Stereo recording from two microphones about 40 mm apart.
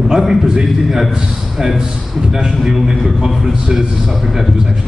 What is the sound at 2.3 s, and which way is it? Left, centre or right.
A man's voice, centre.